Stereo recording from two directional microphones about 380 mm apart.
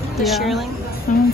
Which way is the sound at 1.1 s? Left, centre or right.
Left.